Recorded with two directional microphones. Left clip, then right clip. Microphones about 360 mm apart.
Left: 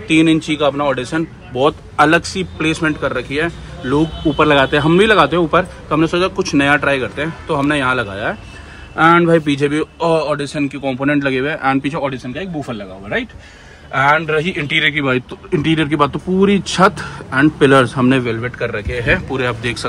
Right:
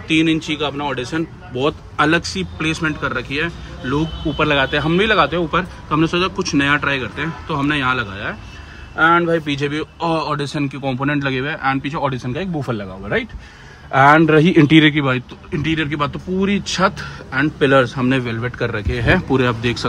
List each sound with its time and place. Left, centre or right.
0.1 s speech: centre
9.2 s speech: centre
12.1 s a man's voice: centre
13.9 s a man's voice: right